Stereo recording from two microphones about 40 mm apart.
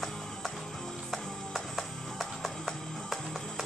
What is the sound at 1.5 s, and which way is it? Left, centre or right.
Music, centre.